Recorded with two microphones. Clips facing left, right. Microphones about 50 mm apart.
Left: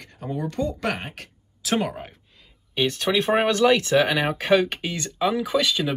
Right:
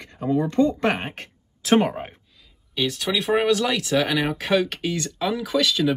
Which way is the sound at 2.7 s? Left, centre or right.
Left.